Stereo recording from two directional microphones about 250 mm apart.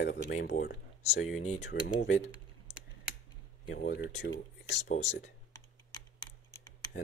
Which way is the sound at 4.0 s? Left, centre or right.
Left.